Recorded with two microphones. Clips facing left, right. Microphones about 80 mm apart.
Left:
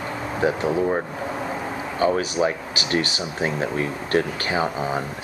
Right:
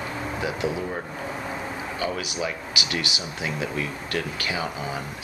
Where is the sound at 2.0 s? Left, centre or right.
Left.